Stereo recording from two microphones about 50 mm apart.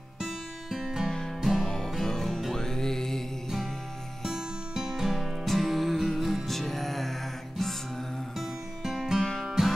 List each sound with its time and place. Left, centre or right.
0.2 s music: centre
4.2 s music: centre
5.1 s music: centre
8.4 s music: centre